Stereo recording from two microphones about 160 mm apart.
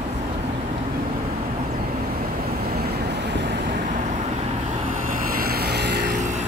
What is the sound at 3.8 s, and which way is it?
Vehicle, 50° right (ahead or behind).